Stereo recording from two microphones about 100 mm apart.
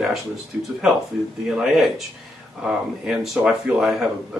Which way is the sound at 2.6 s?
5° right (ahead or behind).